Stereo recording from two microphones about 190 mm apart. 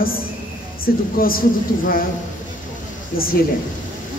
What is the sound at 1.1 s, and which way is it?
Speech, 50° left (ahead or behind).